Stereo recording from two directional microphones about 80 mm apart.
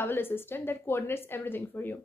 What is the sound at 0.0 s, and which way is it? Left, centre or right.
A woman's voice, left.